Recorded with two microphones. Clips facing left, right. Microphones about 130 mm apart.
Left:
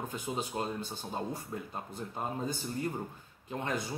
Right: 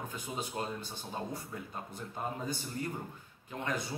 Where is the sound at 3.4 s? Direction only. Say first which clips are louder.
Left 1 dB; 20° left (ahead or behind).